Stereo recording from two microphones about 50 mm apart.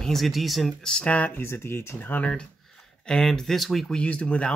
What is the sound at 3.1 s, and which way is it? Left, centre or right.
Speech, centre.